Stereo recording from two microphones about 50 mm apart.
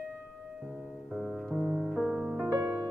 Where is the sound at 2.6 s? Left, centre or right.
Right.